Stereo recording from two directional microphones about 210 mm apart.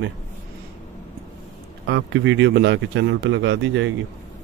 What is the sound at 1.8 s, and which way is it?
Speech, 60° right (ahead or behind).